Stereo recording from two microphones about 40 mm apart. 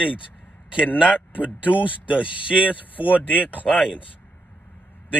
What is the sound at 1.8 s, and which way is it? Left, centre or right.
Speech, right.